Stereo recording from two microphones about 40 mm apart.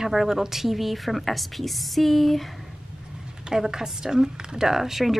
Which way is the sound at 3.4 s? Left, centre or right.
Centre.